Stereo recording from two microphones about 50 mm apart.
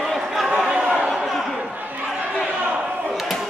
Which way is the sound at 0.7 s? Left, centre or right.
Centre.